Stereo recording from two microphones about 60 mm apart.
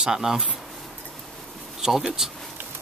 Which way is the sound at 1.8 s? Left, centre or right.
Centre.